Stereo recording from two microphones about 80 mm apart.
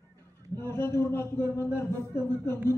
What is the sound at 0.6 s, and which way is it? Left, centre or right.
A man's voice, left.